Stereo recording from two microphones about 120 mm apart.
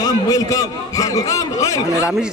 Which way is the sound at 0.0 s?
30° left (ahead or behind).